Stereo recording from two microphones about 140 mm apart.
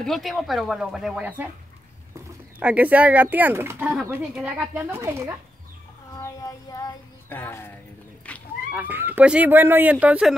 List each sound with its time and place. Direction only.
0.0 s speech: centre (ahead or behind)
2.6 s speech: 10° right (ahead or behind)
6.1 s child singing: 25° left (ahead or behind)
7.2 s speech: 15° left (ahead or behind)
8.3 s a sound: 10° left (ahead or behind)
8.7 s speech: 15° right (ahead or behind)